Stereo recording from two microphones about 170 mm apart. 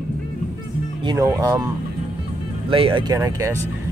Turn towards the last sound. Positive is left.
turn(degrees=-20)  # may be behind; listen again after turning